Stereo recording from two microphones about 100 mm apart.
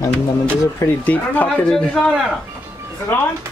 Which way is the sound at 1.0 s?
15° left (ahead or behind).